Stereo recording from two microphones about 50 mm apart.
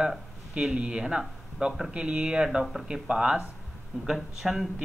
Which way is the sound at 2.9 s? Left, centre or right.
Centre.